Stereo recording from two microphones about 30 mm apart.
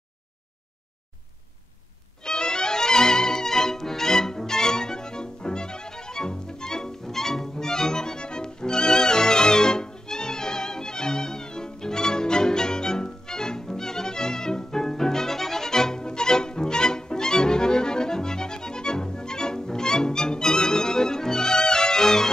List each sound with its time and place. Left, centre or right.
2.2 s music: left